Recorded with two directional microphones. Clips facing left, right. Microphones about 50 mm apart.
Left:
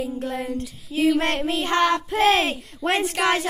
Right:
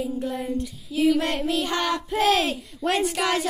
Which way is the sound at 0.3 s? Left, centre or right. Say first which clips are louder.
Left 1 dB; left.